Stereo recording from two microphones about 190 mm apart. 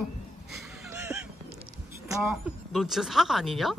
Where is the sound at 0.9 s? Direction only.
15° right (ahead or behind).